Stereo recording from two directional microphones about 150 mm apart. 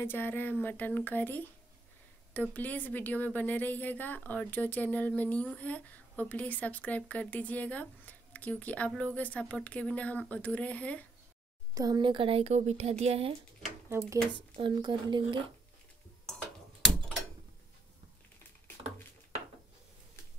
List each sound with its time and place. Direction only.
0.0 s a woman's voice: 15° left (ahead or behind)
2.5 s a woman's voice: 10° left (ahead or behind)
11.7 s speech: 25° right (ahead or behind); by 13.3 s 45° right (ahead or behind)
13.8 s speech: 20° right (ahead or behind)
14.6 s speech: 30° right (ahead or behind)